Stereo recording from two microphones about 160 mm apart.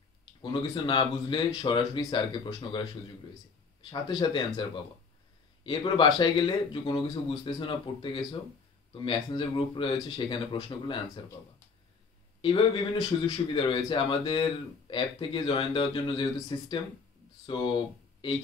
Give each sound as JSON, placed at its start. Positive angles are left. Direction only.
{"t": 0.4, "sound": "speech", "side_deg": 30}
{"t": 4.2, "sound": "speech", "side_deg": 30}
{"t": 12.4, "sound": "speech", "side_deg": 30}